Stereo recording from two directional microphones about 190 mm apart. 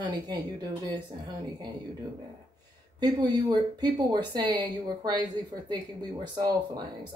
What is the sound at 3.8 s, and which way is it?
Speech, 20° right (ahead or behind).